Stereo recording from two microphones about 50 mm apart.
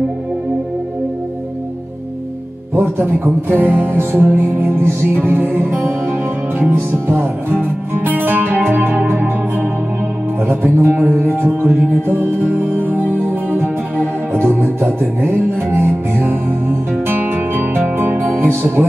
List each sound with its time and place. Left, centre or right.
2.7 s music: right